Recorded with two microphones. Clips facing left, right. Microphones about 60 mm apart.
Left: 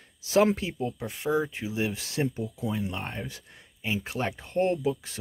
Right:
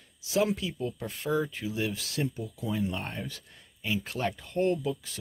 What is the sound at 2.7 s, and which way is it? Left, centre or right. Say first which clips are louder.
Speech: even; centre.